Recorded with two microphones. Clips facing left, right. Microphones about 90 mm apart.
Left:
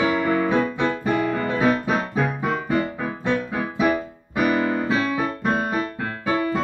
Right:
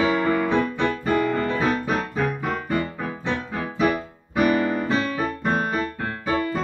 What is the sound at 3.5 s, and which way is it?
Music, 15° left (ahead or behind).